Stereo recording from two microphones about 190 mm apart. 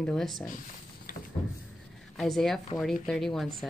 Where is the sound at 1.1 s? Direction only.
50° left (ahead or behind).